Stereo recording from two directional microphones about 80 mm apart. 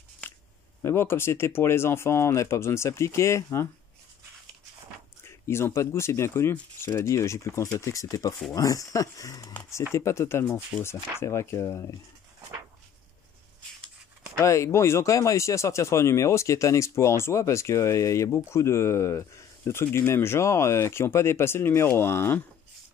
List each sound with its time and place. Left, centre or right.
0.2 s a sound: centre
0.8 s speech: left
5.5 s speech: left
9.9 s speech: left
14.4 s speech: left